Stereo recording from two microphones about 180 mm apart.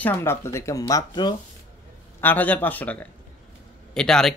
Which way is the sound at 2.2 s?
10° left (ahead or behind).